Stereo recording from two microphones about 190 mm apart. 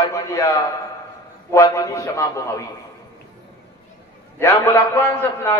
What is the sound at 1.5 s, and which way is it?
A man's voice, 15° left (ahead or behind).